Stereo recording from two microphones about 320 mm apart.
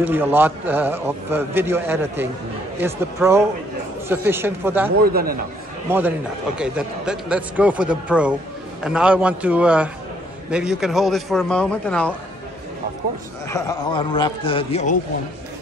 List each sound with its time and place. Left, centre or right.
0.0 s a man's voice: centre
5.0 s a man's voice: right
5.9 s a man's voice: centre
13.5 s a man's voice: centre